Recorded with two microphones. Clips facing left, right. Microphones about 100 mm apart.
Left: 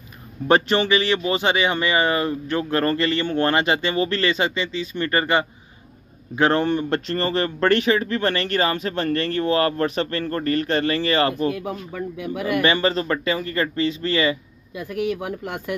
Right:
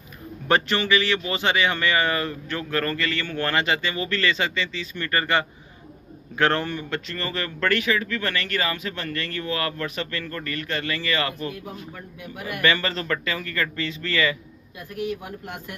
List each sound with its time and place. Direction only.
0.5 s speech: 25° left (ahead or behind)
6.8 s speech: 35° left (ahead or behind)
12.2 s speech: 90° left
12.6 s speech: 25° left (ahead or behind)
14.9 s speech: 90° left